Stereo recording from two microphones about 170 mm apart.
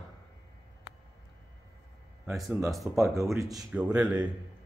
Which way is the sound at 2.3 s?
Centre (ahead or behind).